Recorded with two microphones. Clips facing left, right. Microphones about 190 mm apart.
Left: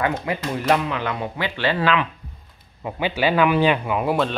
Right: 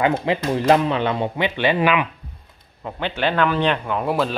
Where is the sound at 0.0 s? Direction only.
25° right (ahead or behind).